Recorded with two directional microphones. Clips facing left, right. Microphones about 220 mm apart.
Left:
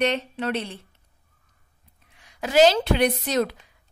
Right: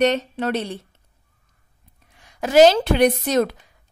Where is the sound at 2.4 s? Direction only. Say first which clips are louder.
Right 4 dB; 45° right (ahead or behind).